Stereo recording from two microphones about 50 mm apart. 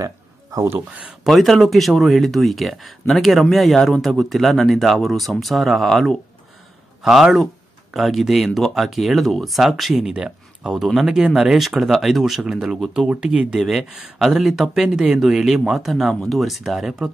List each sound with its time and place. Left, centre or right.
1.3 s speech: centre
7.0 s speech: centre
10.1 s speech: centre
13.6 s speech: centre